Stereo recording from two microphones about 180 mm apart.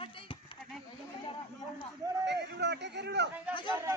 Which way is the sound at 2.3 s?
70° right (ahead or behind).